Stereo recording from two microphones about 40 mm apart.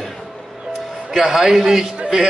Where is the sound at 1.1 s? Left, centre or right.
Centre.